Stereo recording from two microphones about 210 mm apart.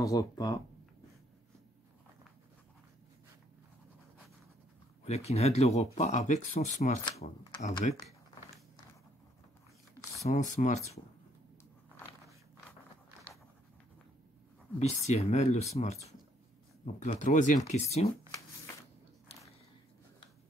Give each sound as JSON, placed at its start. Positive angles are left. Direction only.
{"t": 0.0, "sound": "speech", "side_deg": 15}
{"t": 5.0, "sound": "speech", "side_deg": 30}
{"t": 10.2, "sound": "speech", "side_deg": 35}
{"t": 14.8, "sound": "speech", "side_deg": 30}